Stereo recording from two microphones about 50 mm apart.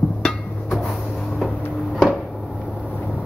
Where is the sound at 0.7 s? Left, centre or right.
Centre.